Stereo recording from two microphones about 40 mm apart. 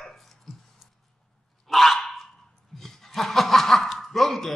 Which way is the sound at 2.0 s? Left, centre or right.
Centre.